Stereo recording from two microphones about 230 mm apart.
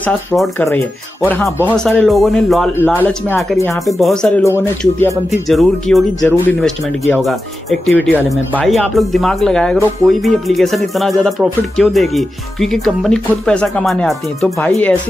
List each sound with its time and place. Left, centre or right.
0.0 s speech: centre
5.5 s speech: centre